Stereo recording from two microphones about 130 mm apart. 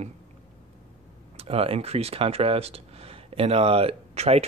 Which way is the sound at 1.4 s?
50° right (ahead or behind).